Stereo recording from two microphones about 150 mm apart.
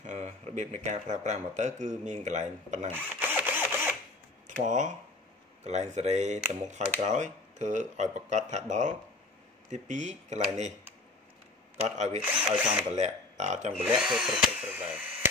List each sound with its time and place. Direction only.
0.0 s speech: 55° right (ahead or behind)
2.9 s a sound: 10° right (ahead or behind)
4.5 s speech: 55° right (ahead or behind)
11.7 s speech: 50° right (ahead or behind)
12.2 s speech: 10° right (ahead or behind)
12.9 s speech: 50° right (ahead or behind)
13.7 s speech: 5° right (ahead or behind)